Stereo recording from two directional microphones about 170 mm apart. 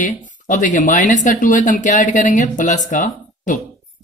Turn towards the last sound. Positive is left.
turn(degrees=45)  # may be behind; listen again after turning